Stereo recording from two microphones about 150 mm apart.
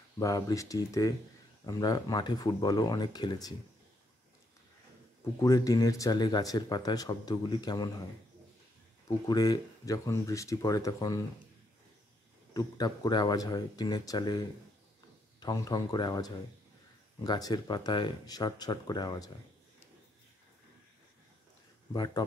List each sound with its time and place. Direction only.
0.2 s speech: 20° left (ahead or behind)
5.4 s speech: 20° left (ahead or behind)
9.0 s speech: 25° left (ahead or behind)
12.5 s speech: 25° left (ahead or behind)
15.4 s speech: 25° left (ahead or behind)
21.9 s speech: 25° left (ahead or behind)